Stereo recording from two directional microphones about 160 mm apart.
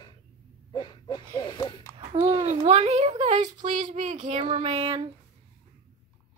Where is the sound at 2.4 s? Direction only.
40° right (ahead or behind).